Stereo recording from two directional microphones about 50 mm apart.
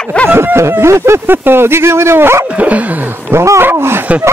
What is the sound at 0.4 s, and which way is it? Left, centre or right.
Speech, right.